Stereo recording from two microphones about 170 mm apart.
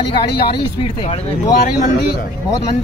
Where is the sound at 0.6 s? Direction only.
35° left (ahead or behind).